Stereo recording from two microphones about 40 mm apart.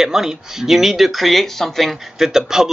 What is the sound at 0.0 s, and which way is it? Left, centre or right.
Speech, centre.